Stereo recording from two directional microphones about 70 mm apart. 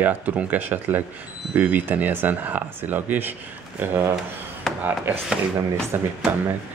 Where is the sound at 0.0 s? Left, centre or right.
Right.